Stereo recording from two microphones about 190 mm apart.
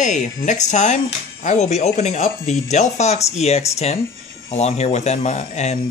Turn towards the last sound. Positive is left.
turn(degrees=35)  # may be behind; listen again after turning